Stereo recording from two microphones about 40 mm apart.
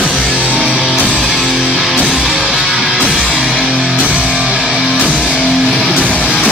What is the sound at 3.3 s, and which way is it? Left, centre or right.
Music, centre.